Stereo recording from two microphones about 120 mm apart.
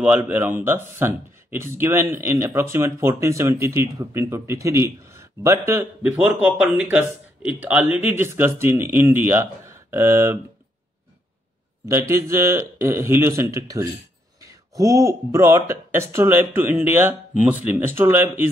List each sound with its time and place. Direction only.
0.0 s speech: 10° right (ahead or behind)
6.4 s speech: 10° right (ahead or behind)
11.9 s speech: 25° right (ahead or behind)